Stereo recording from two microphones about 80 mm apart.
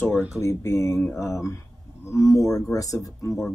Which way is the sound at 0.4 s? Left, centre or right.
Left.